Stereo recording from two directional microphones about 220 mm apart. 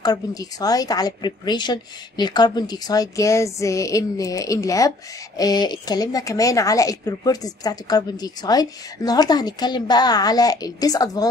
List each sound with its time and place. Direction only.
0.0 s speech: 15° left (ahead or behind)